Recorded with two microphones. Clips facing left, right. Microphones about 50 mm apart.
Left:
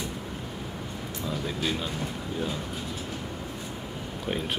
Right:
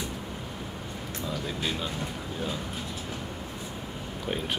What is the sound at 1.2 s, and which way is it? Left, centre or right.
Speech, centre.